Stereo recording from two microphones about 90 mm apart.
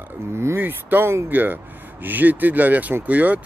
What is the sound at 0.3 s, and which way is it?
Speech, 30° right (ahead or behind).